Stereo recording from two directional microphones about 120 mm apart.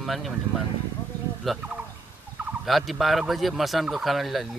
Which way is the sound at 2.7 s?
Centre (ahead or behind).